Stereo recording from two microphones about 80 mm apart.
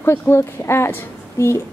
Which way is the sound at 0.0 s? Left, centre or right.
Left.